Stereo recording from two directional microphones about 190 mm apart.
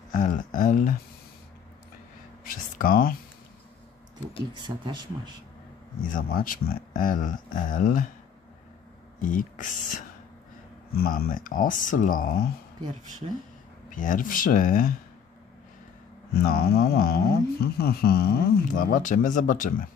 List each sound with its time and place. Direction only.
0.1 s speech: 45° left (ahead or behind)
2.4 s a sound: 50° left (ahead or behind)
4.6 s speech: 25° right (ahead or behind)
6.1 s speech: 50° left (ahead or behind)
9.2 s speech: 45° left (ahead or behind)
13.8 s speech: 45° left (ahead or behind)
16.4 s speech: 50° left (ahead or behind)